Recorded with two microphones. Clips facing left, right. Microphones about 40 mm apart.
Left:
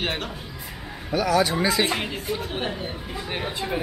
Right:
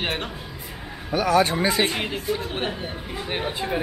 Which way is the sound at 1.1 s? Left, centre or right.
Right.